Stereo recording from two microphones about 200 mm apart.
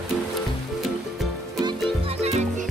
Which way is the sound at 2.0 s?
30° right (ahead or behind).